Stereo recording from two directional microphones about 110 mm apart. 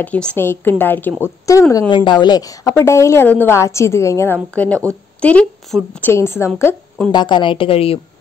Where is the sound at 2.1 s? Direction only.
40° left (ahead or behind).